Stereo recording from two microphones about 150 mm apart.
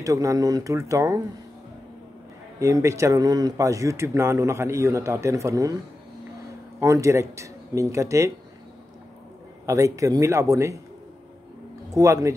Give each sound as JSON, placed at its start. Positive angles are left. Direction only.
{"t": 0.0, "sound": "a man's voice", "side_deg": -20}
{"t": 2.6, "sound": "a man's voice", "side_deg": -20}
{"t": 6.8, "sound": "a man's voice", "side_deg": -20}
{"t": 9.7, "sound": "a man's voice", "side_deg": -20}
{"t": 11.9, "sound": "a man's voice", "side_deg": -20}